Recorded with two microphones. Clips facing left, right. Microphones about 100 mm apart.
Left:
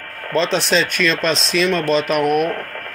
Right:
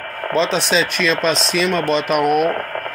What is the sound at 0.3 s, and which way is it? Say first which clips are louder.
Speech: even; centre (ahead or behind).